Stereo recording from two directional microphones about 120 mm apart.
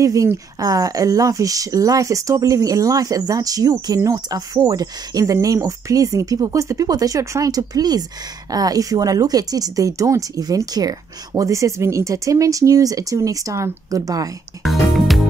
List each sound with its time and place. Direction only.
0.0 s speech: 25° right (ahead or behind)
14.6 s music: centre (ahead or behind)